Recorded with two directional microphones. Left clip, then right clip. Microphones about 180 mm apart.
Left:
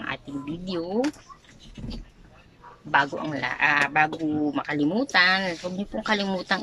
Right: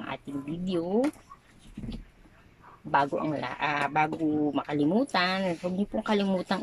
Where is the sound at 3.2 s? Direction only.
20° right (ahead or behind).